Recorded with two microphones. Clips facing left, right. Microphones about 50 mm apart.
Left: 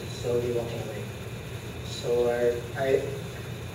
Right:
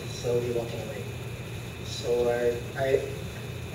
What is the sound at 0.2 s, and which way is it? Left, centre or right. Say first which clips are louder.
Speech: even; centre.